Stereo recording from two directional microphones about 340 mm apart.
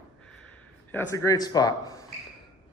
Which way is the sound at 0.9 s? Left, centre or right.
Centre.